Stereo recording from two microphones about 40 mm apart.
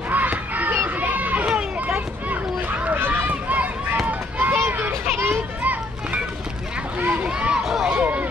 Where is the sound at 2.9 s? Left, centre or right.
Right.